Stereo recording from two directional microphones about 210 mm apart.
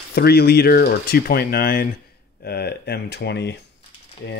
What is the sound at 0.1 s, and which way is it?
Speech, 50° left (ahead or behind).